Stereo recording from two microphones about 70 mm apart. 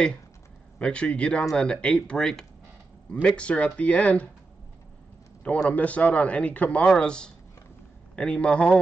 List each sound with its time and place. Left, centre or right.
0.7 s a man's voice: centre
5.4 s a man's voice: centre